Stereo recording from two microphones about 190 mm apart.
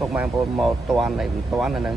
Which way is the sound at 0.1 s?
5° right (ahead or behind).